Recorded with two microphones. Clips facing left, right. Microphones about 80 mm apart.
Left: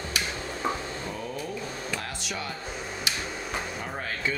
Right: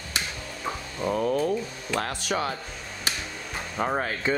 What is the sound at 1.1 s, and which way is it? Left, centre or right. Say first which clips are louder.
Speech: right 15 dB; right.